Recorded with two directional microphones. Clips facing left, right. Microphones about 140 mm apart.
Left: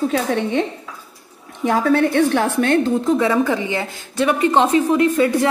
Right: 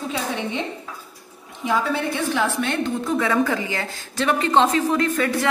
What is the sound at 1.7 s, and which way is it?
A woman's voice, 50° left (ahead or behind).